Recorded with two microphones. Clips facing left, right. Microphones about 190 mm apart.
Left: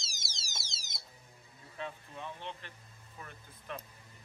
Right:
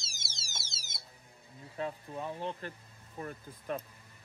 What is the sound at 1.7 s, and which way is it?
Speech, 40° right (ahead or behind).